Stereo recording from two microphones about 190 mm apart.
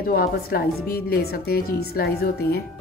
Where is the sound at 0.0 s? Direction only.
50° left (ahead or behind).